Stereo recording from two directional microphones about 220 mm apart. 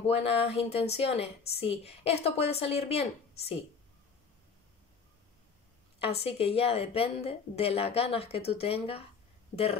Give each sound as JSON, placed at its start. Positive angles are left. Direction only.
{"t": 0.0, "sound": "a woman's voice", "side_deg": 25}
{"t": 6.0, "sound": "a woman's voice", "side_deg": 25}